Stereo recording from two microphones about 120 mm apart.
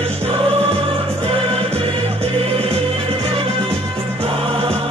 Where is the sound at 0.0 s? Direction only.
55° right (ahead or behind).